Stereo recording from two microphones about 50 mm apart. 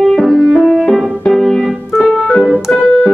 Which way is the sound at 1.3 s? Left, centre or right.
Centre.